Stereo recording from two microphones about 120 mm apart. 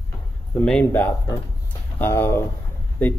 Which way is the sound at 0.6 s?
10° left (ahead or behind).